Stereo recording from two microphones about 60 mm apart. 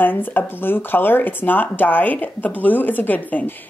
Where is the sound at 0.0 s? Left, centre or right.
Left.